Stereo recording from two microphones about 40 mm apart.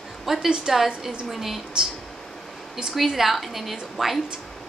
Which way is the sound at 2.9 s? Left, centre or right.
Centre.